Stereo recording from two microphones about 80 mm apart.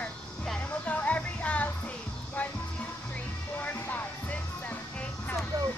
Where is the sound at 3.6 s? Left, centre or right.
Left.